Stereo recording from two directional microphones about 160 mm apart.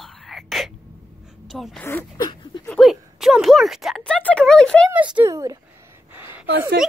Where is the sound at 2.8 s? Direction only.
Centre (ahead or behind).